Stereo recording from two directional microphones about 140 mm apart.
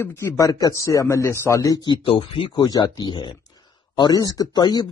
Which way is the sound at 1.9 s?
35° left (ahead or behind).